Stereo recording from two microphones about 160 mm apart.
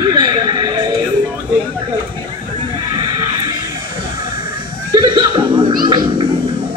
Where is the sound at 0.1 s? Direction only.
25° right (ahead or behind).